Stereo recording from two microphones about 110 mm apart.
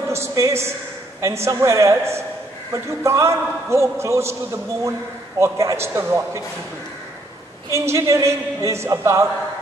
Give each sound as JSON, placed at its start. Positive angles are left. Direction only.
{"t": 0.1, "sound": "a sound", "side_deg": -25}
{"t": 1.2, "sound": "a man's voice", "side_deg": -25}
{"t": 7.7, "sound": "a man's voice", "side_deg": -25}